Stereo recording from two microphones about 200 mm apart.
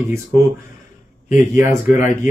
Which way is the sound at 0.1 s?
10° right (ahead or behind).